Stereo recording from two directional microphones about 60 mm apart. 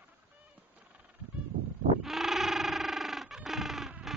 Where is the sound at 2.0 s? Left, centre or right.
Centre.